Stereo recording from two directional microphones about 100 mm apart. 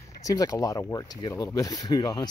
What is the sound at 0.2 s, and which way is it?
Speech, 35° left (ahead or behind).